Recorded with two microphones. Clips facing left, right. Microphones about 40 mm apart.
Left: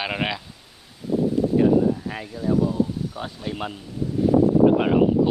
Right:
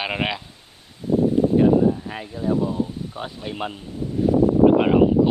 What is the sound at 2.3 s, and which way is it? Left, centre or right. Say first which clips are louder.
Speech: even; right.